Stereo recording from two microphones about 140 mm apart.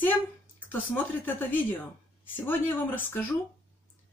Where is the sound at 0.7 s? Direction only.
15° left (ahead or behind).